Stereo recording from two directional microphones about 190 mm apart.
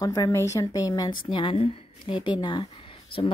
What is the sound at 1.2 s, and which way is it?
A woman's voice, 25° left (ahead or behind).